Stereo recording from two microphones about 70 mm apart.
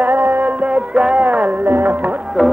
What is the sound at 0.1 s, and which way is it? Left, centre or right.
Music, right.